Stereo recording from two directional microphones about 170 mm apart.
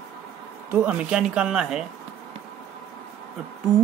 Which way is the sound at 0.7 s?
10° right (ahead or behind).